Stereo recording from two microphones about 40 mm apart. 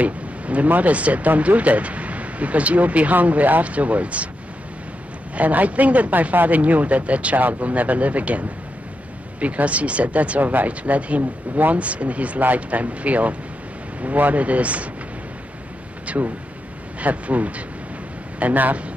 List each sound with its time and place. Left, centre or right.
0.0 s speech: right
5.3 s speech: right
16.1 s speech: right
17.0 s a man's voice: right